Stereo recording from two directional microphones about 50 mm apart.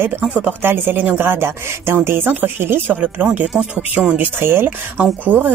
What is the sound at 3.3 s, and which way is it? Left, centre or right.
Speech, right.